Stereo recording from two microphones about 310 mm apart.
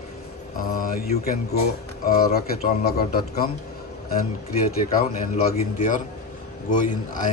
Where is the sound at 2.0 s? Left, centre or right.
Left.